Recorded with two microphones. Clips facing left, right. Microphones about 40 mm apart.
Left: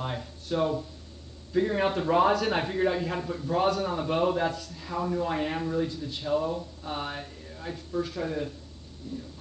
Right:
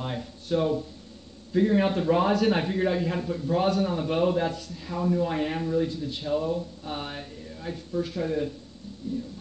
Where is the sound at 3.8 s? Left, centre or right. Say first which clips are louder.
Right 2 dB; centre.